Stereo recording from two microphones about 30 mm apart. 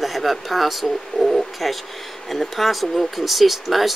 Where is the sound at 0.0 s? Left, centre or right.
Centre.